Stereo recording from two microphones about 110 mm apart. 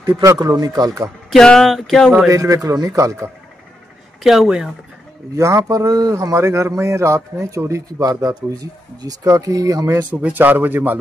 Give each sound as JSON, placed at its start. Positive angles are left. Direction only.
{"t": 0.0, "sound": "speech", "side_deg": -30}
{"t": 1.3, "sound": "speech", "side_deg": 5}
{"t": 2.2, "sound": "speech", "side_deg": -30}
{"t": 4.2, "sound": "speech", "side_deg": -5}
{"t": 5.3, "sound": "speech", "side_deg": -25}
{"t": 10.2, "sound": "speech", "side_deg": -15}